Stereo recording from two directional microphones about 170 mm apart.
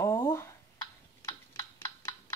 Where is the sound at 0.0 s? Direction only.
15° left (ahead or behind).